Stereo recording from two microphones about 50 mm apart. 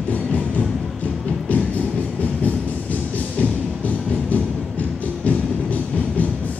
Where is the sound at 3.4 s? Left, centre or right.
Left.